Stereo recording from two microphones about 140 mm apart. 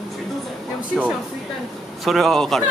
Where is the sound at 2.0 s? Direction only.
Centre (ahead or behind).